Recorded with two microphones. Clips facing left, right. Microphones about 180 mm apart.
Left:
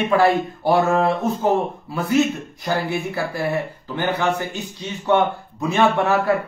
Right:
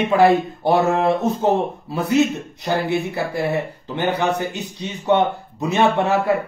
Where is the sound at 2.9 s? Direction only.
25° right (ahead or behind).